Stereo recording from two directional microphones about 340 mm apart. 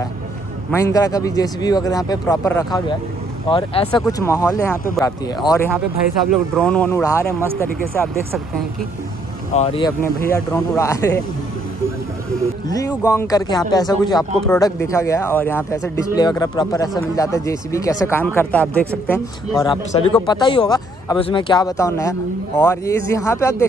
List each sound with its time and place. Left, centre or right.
0.7 s speech: centre
8.0 s speech: centre
9.5 s speech: centre
12.6 s speech: centre